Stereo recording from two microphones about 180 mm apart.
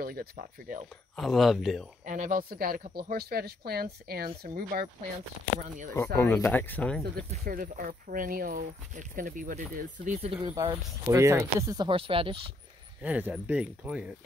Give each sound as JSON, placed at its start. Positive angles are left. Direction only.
{"t": 0.0, "sound": "speech", "side_deg": -55}
{"t": 1.1, "sound": "speech", "side_deg": 0}
{"t": 2.0, "sound": "speech", "side_deg": -45}
{"t": 6.1, "sound": "speech", "side_deg": 15}
{"t": 7.2, "sound": "speech", "side_deg": -50}
{"t": 10.3, "sound": "speech", "side_deg": -20}
{"t": 13.0, "sound": "speech", "side_deg": -10}